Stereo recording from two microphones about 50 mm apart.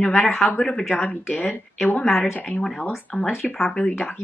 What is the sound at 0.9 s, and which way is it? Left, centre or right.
A woman's voice, left.